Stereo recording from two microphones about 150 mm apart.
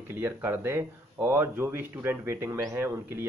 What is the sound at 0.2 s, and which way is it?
Speech, 15° right (ahead or behind).